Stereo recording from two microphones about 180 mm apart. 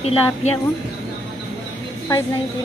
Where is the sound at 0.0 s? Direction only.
35° left (ahead or behind).